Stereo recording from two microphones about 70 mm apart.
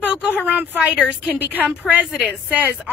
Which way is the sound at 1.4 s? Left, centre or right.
Right.